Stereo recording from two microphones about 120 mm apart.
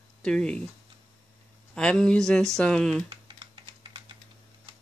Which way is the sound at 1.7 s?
5° left (ahead or behind).